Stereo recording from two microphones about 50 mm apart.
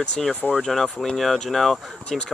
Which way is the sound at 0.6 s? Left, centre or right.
Centre.